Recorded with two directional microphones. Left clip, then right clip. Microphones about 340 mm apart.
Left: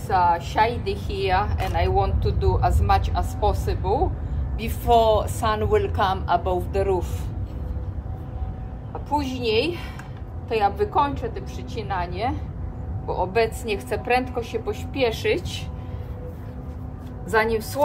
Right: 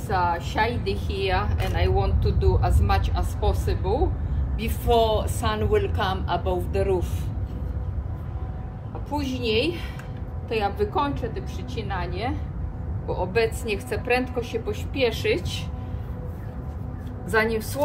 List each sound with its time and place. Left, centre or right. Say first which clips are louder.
0.1 s a woman's voice: left 4 dB; centre
9.1 s a woman's voice: left 3 dB; centre
17.3 s a woman's voice: left 2 dB; centre